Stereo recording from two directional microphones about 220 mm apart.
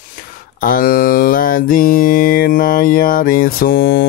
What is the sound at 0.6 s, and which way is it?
Mantra, 40° left (ahead or behind).